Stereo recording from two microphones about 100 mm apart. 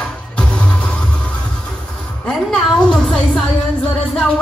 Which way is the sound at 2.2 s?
10° left (ahead or behind).